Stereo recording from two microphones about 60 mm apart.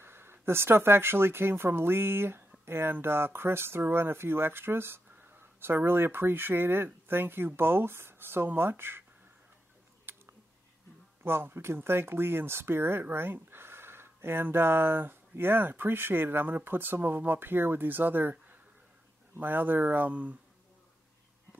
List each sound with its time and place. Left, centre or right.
0.0 s speech: right
11.2 s speech: right
19.3 s speech: right